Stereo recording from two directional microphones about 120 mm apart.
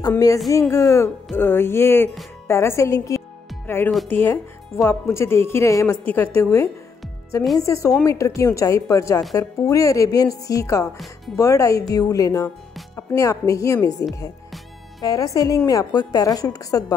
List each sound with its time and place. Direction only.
0.5 s a woman's voice: 25° left (ahead or behind)
6.0 s a woman's voice: 15° left (ahead or behind)